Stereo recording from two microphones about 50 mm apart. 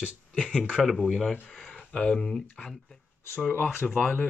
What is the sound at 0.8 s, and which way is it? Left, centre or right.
Speech, centre.